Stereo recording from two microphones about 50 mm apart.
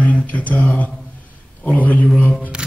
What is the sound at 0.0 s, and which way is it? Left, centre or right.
Mantra, left.